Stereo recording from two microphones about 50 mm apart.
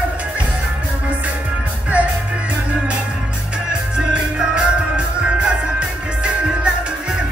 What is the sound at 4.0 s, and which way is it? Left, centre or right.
Music, centre.